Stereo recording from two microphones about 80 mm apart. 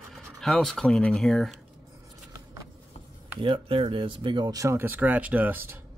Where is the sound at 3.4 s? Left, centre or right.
Right.